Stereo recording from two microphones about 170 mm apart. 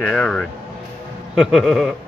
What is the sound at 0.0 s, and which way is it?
A man's voice, 5° left (ahead or behind).